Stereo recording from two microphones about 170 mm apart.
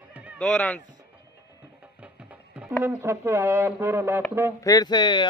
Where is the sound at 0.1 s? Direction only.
10° right (ahead or behind).